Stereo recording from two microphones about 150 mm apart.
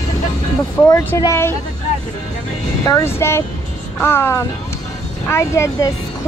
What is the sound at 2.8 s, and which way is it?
Speech, 20° left (ahead or behind).